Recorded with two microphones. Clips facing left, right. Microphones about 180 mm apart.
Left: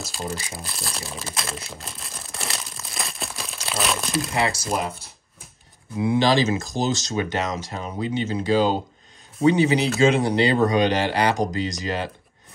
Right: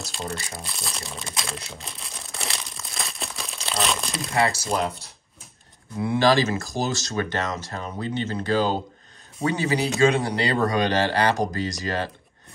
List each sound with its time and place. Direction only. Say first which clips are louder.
0.0 s crumpling: left 1 dB; centre (ahead or behind)
4.6 s speech: right 1 dB; centre (ahead or behind)
5.9 s speech: left 1 dB; 20° left (ahead or behind)